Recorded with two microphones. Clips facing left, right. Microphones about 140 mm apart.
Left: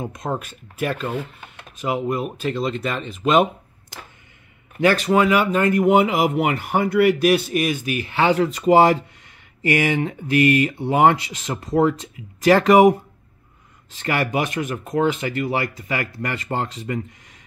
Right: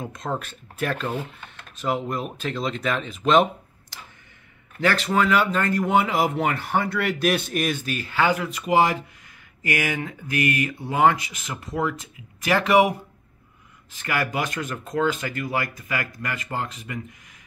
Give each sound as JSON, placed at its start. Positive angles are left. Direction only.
{"t": 0.0, "sound": "speech", "side_deg": 15}
{"t": 4.7, "sound": "speech", "side_deg": 15}
{"t": 13.9, "sound": "speech", "side_deg": 25}